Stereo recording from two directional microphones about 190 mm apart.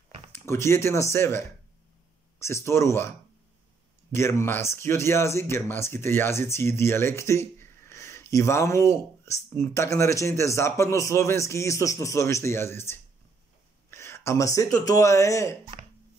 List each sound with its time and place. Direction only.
0.3 s speech: 15° left (ahead or behind)